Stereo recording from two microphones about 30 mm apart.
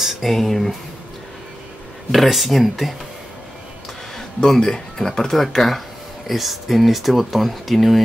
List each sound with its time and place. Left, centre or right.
0.2 s speech: centre
2.1 s speech: centre
4.6 s speech: centre
6.2 s speech: centre